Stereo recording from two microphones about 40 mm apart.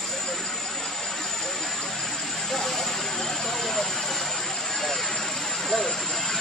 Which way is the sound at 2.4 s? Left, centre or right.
Centre.